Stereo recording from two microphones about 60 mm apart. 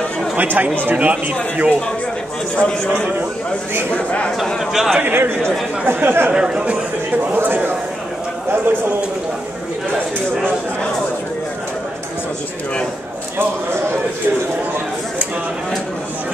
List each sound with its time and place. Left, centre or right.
0.4 s speech: right
2.5 s a man's voice: centre
4.6 s a man's voice: centre
4.9 s speech: right
6.3 s speech: centre
7.3 s speech: right